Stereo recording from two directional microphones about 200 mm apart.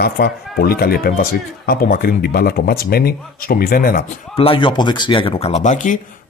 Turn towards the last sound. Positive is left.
turn(degrees=40)  # may be behind; listen again after turning